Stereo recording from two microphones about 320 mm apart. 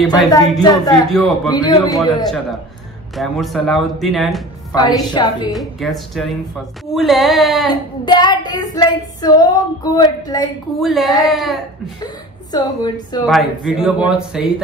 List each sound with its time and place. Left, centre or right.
0.0 s speech: centre
1.5 s child singing: centre
3.2 s speech: centre
4.7 s child singing: centre
5.5 s speech: centre
8.0 s child singing: centre
10.8 s speech: centre
12.0 s speech: centre
13.3 s speech: centre